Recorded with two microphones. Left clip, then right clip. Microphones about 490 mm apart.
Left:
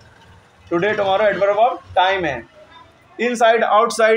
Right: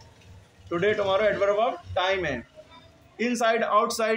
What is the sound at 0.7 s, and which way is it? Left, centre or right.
A man's voice, right.